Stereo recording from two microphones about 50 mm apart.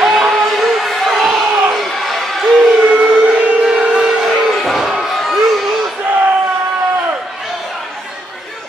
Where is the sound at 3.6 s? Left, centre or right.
Centre.